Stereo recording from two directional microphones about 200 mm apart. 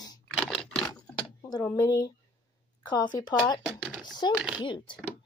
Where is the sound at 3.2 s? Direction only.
20° left (ahead or behind).